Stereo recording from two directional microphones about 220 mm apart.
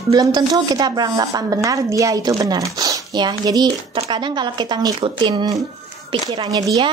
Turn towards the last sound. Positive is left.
turn(degrees=-15)  # may be behind; listen again after turning